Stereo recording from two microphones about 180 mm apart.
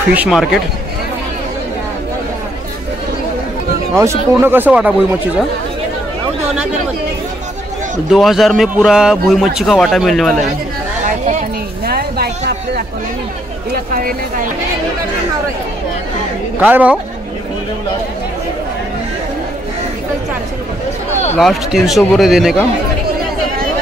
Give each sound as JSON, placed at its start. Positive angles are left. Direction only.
{"t": 0.1, "sound": "speech", "side_deg": -5}
{"t": 3.9, "sound": "speech", "side_deg": -15}
{"t": 8.1, "sound": "speech", "side_deg": 0}
{"t": 11.1, "sound": "a sound", "side_deg": -40}
{"t": 11.8, "sound": "a sound", "side_deg": -60}
{"t": 13.9, "sound": "speech", "side_deg": -50}
{"t": 16.5, "sound": "speech", "side_deg": -10}
{"t": 21.4, "sound": "speech", "side_deg": 0}